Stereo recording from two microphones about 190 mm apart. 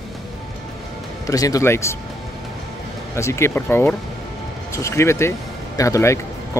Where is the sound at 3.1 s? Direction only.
15° left (ahead or behind).